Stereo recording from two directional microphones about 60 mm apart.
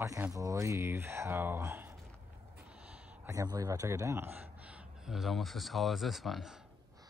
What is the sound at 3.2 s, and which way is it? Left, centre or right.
Speech, right.